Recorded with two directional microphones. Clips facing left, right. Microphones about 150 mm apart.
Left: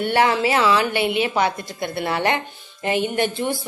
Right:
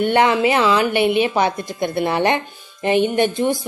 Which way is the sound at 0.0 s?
20° right (ahead or behind).